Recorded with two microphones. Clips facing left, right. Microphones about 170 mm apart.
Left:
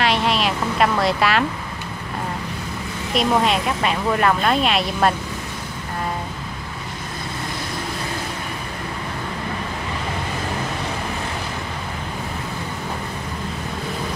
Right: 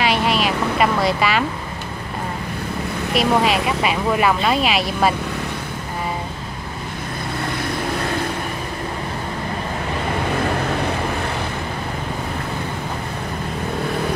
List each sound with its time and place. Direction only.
0.0 s vehicle: centre (ahead or behind)
3.2 s speech: 5° right (ahead or behind)